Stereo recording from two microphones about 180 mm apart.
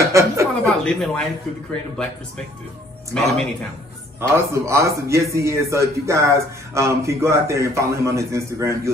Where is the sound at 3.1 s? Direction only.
Centre (ahead or behind).